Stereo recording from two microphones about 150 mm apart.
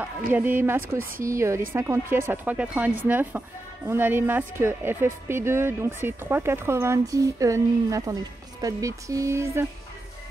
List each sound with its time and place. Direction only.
0.3 s a woman's voice: 10° right (ahead or behind)